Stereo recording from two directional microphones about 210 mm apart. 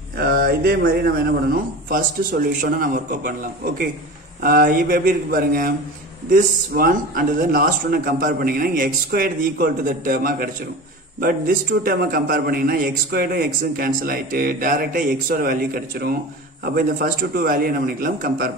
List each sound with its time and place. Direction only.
0.2 s a man's voice: 50° right (ahead or behind)